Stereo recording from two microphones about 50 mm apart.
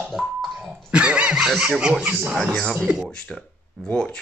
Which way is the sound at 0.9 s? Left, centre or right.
Right.